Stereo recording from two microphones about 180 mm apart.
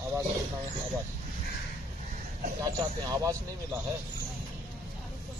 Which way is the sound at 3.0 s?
20° right (ahead or behind).